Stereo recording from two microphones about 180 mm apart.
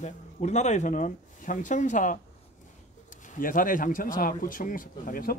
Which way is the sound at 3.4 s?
50° left (ahead or behind).